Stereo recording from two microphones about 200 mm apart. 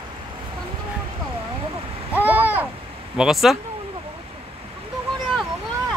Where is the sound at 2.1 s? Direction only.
10° right (ahead or behind).